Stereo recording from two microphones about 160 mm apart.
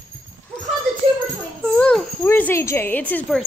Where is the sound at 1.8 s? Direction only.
5° left (ahead or behind).